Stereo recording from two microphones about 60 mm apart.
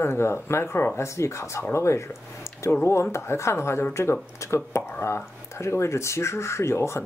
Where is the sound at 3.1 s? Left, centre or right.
Left.